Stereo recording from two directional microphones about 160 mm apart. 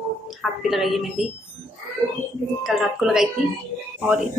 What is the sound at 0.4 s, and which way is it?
Speech, centre (ahead or behind).